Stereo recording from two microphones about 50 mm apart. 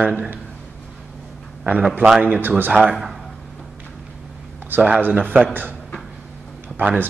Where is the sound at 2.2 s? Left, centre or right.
Right.